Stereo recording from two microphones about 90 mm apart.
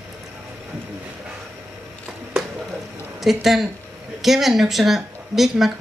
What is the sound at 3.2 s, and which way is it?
A woman's voice, 5° right (ahead or behind).